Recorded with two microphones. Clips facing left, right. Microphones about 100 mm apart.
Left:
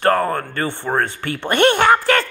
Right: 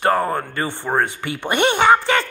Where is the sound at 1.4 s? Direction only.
5° right (ahead or behind).